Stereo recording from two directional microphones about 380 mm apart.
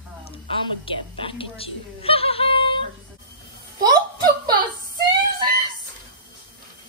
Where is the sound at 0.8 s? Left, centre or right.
Centre.